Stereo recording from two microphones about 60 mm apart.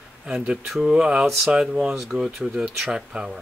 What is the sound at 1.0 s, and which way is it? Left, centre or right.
Speech, right.